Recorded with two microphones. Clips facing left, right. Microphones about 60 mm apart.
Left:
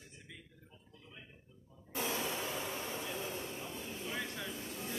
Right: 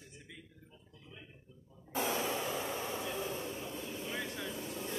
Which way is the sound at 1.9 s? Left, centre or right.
Right.